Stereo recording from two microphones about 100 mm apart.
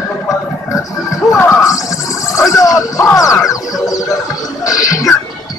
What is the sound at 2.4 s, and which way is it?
Music, 35° left (ahead or behind).